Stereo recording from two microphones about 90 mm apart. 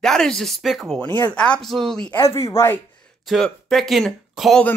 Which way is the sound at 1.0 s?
20° left (ahead or behind).